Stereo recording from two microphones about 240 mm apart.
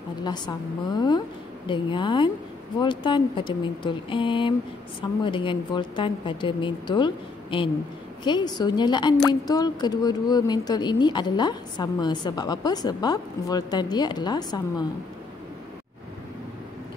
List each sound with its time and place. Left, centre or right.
0.2 s a woman's voice: centre